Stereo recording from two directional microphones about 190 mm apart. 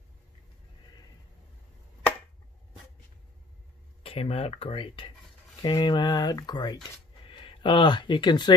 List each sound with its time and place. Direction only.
4.0 s speech: 30° left (ahead or behind)